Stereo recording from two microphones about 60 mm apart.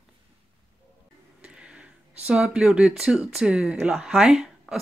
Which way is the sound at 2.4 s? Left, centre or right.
Centre.